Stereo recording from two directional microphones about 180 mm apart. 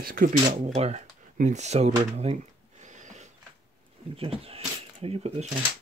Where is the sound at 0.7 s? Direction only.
35° right (ahead or behind).